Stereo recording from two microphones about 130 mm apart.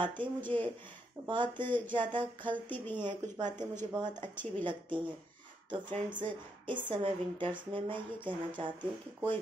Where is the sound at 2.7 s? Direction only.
15° left (ahead or behind).